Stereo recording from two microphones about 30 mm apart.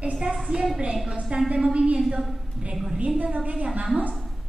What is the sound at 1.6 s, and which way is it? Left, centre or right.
Speech, right.